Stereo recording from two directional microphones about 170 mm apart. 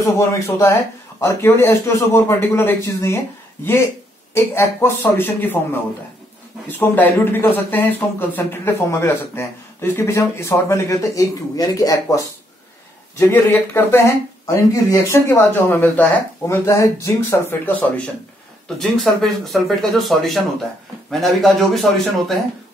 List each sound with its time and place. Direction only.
0.0 s a man's voice: 15° left (ahead or behind)
4.3 s a man's voice: 15° left (ahead or behind)
13.2 s a man's voice: 10° left (ahead or behind)